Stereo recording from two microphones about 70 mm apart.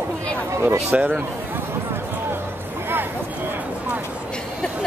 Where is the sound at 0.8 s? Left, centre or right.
Right.